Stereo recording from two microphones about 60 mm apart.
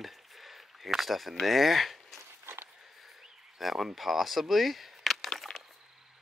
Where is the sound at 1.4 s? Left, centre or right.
Centre.